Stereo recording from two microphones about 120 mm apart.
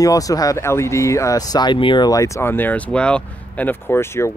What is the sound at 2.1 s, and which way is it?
Speech, 25° left (ahead or behind).